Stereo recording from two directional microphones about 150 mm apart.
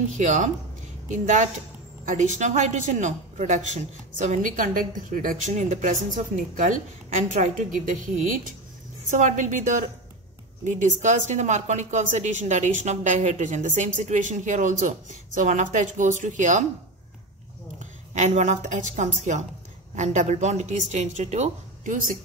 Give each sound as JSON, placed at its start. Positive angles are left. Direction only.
{"t": 0.1, "sound": "speech", "side_deg": -55}
{"t": 17.7, "sound": "speech", "side_deg": -50}